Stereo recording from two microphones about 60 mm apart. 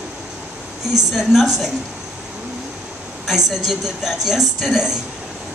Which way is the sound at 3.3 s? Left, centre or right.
Centre.